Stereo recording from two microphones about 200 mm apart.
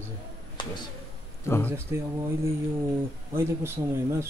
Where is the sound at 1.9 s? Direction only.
10° right (ahead or behind).